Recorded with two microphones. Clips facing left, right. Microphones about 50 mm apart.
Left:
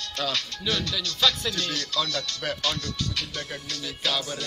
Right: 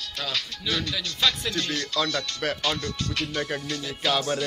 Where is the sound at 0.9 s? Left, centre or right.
Right.